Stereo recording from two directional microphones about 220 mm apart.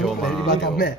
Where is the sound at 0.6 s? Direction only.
45° left (ahead or behind).